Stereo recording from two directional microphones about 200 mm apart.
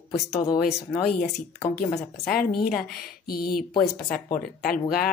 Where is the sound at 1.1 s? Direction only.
40° left (ahead or behind).